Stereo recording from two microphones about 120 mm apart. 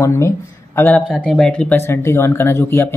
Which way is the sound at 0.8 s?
10° left (ahead or behind).